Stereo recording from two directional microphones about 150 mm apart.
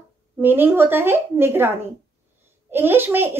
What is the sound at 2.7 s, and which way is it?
Speech, 15° right (ahead or behind).